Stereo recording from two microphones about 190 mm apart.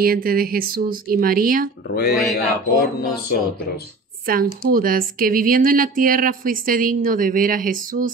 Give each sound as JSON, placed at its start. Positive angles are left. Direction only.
{"t": 0.0, "sound": "speech", "side_deg": -50}
{"t": 1.9, "sound": "speech", "side_deg": 55}
{"t": 4.3, "sound": "speech", "side_deg": -50}